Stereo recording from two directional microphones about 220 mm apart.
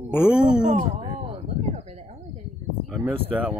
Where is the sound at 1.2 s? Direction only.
30° right (ahead or behind).